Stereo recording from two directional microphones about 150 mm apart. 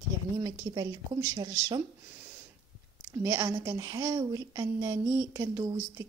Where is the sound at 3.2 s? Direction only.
20° right (ahead or behind).